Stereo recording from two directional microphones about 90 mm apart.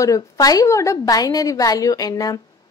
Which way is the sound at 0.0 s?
40° left (ahead or behind).